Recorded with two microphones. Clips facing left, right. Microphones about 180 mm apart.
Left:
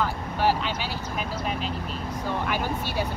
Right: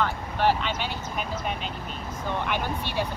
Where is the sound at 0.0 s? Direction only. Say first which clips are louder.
Even; 10° left (ahead or behind).